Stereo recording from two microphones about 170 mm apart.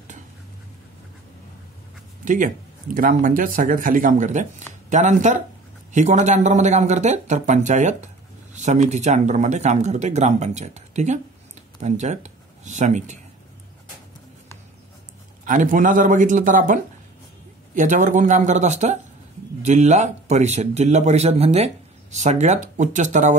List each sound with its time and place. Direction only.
2.2 s speech: 50° right (ahead or behind)
15.4 s a man's voice: 50° right (ahead or behind)